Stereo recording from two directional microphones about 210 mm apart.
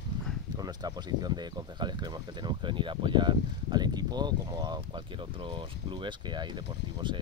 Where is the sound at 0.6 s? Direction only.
20° right (ahead or behind).